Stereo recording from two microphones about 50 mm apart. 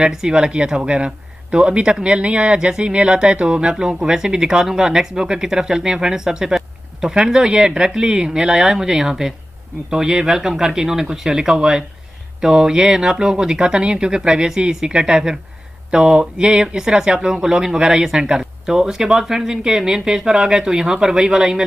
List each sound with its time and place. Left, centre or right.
0.0 s speech: centre